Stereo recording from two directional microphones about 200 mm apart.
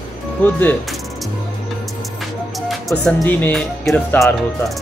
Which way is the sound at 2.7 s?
Centre (ahead or behind).